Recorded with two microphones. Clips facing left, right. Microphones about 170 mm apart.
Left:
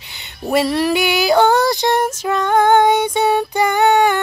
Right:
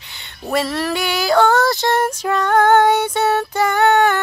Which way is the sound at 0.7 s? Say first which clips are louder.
Left 5 dB; 15° left (ahead or behind).